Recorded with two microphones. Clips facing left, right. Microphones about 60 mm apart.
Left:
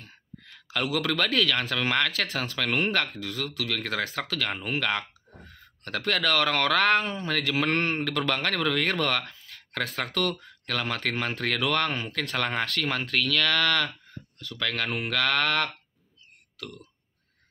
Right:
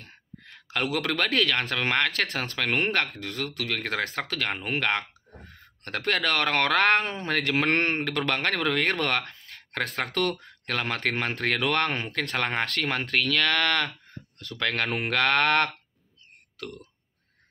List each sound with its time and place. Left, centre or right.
0.8 s speech: right
9.2 s a sound: right
10.0 s speech: right
10.7 s speech: right
12.2 s speech: right
14.0 s speech: right